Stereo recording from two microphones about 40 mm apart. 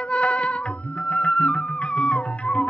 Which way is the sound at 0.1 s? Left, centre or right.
Left.